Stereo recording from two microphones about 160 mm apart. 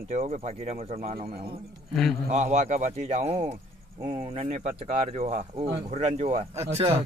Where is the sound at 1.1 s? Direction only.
70° right (ahead or behind).